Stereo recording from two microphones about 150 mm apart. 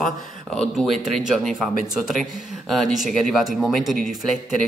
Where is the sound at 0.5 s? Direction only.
5° left (ahead or behind).